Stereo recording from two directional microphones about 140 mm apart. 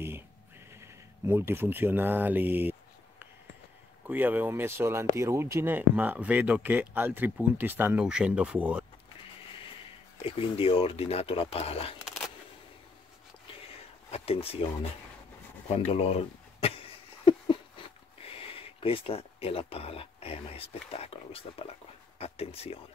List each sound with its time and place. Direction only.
0.7 s speech: 15° right (ahead or behind)
4.1 s speech: 15° right (ahead or behind)
10.1 s speech: 45° left (ahead or behind)
14.1 s speech: 45° left (ahead or behind)
15.7 s a sound: 45° left (ahead or behind)
18.4 s speech: 40° left (ahead or behind)